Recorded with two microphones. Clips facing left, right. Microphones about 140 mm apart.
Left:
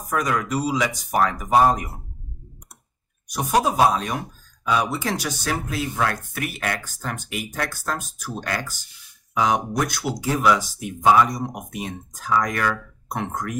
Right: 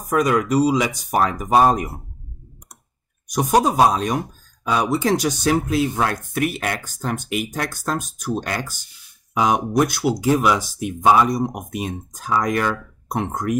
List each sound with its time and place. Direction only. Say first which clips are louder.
0.1 s speech: right 6 dB; 15° right (ahead or behind)
3.3 s speech: right 3 dB; 20° right (ahead or behind)